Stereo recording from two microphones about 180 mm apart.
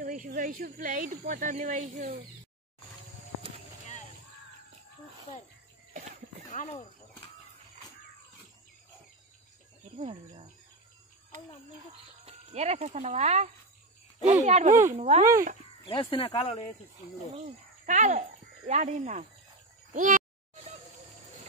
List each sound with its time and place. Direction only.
0.0 s speech: 50° right (ahead or behind)
6.5 s speech: 45° left (ahead or behind)
9.9 s speech: 35° right (ahead or behind)
12.3 s speech: 35° right (ahead or behind)
15.9 s speech: 30° left (ahead or behind)
17.8 s a child's voice: 40° right (ahead or behind)